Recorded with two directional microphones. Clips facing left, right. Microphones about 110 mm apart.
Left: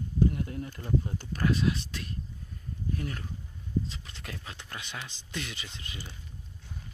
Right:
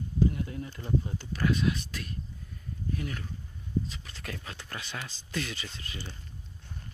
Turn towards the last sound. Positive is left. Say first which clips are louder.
# right 2 dB
turn(degrees=15)  # may be behind; listen again after turning